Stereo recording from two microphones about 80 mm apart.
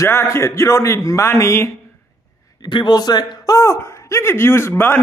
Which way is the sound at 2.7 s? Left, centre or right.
Left.